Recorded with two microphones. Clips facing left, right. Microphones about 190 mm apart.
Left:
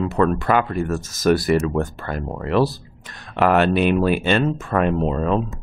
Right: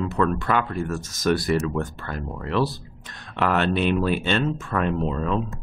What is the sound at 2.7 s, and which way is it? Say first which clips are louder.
Speech: even; 5° left (ahead or behind).